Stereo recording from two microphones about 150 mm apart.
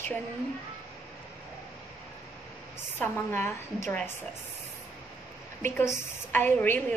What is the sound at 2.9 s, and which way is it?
A woman's voice, 15° left (ahead or behind).